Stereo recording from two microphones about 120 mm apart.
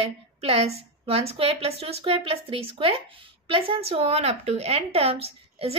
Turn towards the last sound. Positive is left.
turn(degrees=-55)  # may be behind; listen again after turning